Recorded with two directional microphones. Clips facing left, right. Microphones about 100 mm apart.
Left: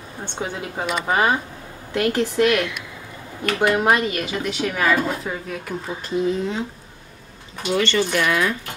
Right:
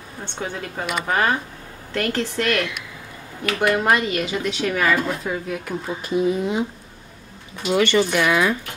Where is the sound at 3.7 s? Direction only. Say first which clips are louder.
Even; 10° left (ahead or behind); by 6.6 s 15° right (ahead or behind).